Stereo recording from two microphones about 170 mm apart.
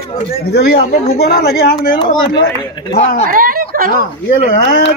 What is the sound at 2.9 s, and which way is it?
Speech, 40° left (ahead or behind).